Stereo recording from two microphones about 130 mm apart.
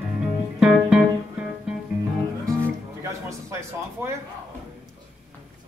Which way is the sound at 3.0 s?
25° right (ahead or behind).